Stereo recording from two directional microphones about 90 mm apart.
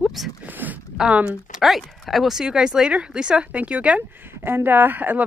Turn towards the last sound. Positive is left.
turn(degrees=-20)  # may be behind; listen again after turning